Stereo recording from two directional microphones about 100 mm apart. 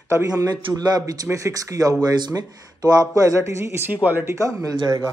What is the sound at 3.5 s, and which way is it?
Speech, 25° right (ahead or behind).